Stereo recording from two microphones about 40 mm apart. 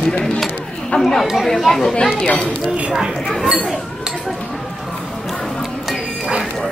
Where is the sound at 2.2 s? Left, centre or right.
Left.